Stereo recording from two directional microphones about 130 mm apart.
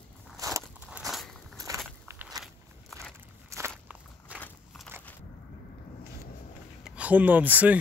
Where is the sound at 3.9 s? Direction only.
10° right (ahead or behind).